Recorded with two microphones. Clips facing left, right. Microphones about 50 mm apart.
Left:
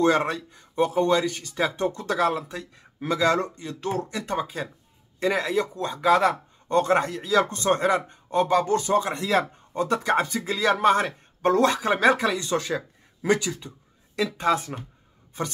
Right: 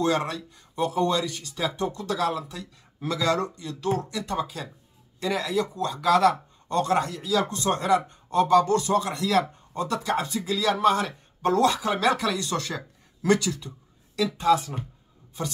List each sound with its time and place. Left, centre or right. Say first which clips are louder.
0.0 s speech: left 4 dB; left